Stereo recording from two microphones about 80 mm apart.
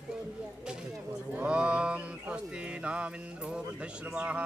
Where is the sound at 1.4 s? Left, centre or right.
Centre.